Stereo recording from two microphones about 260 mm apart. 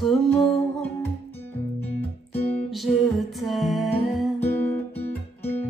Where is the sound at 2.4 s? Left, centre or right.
Left.